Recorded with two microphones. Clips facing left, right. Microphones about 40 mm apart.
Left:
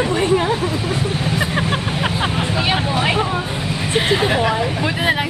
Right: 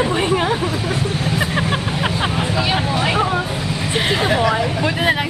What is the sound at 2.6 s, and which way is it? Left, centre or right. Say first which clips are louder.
Speech: left 1 dB; centre.